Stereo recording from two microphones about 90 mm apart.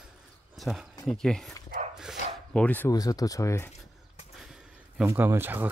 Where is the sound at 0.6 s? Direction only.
Centre (ahead or behind).